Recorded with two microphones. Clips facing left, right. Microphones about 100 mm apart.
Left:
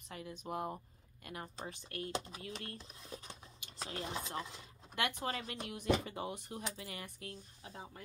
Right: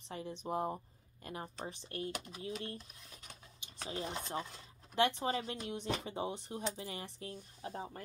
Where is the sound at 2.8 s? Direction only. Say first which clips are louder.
Left 7 dB; 30° left (ahead or behind).